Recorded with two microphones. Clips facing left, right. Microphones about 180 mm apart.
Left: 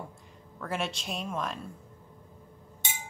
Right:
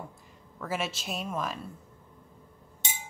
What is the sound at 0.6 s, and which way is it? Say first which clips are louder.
Speech: even; 5° right (ahead or behind).